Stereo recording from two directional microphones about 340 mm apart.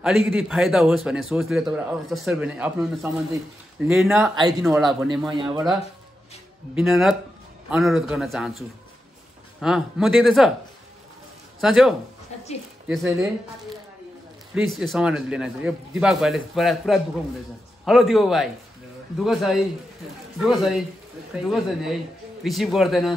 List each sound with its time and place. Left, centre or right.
0.0 s a man's voice: centre
6.7 s a man's voice: centre
11.6 s a man's voice: centre